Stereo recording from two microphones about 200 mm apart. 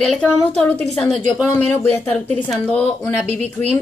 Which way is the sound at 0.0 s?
5° left (ahead or behind).